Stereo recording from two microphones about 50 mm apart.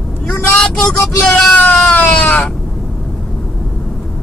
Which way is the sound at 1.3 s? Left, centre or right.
Left.